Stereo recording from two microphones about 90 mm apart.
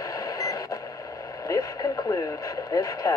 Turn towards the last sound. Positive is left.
turn(degrees=40)  # may be behind; listen again after turning